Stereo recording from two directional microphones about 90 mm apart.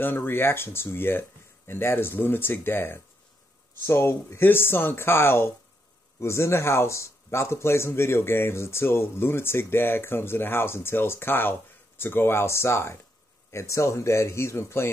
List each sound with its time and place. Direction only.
0.0 s speech: 25° left (ahead or behind)